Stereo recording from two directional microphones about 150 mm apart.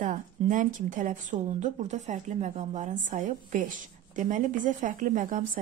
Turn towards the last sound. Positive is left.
turn(degrees=-60)  # may be behind; listen again after turning